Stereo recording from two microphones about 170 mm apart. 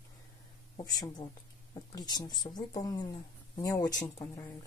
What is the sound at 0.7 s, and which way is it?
Speech, 25° left (ahead or behind).